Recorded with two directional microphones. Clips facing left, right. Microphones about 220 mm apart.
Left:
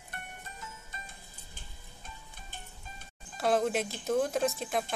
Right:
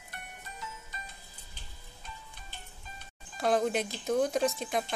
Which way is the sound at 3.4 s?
Centre (ahead or behind).